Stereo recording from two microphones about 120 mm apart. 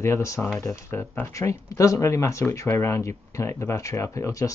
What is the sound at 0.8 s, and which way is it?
Speech, 20° left (ahead or behind).